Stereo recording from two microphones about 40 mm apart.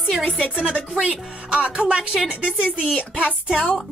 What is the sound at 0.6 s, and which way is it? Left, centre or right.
Speech, right.